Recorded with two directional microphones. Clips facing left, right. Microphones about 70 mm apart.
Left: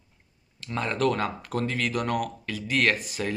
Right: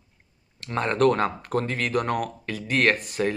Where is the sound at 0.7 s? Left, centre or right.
Right.